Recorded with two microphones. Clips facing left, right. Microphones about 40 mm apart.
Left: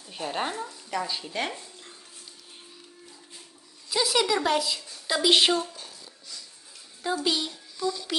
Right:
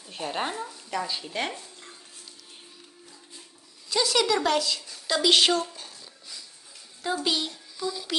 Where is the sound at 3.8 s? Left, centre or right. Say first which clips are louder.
Right 1 dB; centre.